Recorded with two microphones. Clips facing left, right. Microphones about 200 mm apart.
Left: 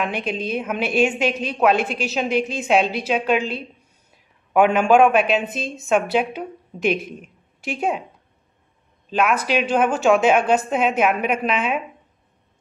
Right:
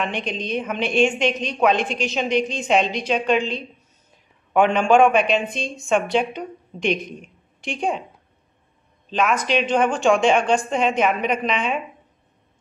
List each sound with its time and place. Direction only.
0.0 s a woman's voice: 5° left (ahead or behind)
9.1 s a woman's voice: 5° left (ahead or behind)